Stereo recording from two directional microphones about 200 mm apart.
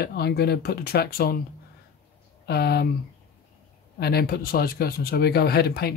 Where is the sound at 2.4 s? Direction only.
55° left (ahead or behind).